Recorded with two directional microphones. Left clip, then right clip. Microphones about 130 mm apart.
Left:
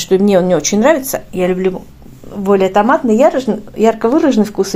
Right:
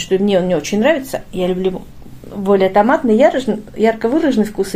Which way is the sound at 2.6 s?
Centre (ahead or behind).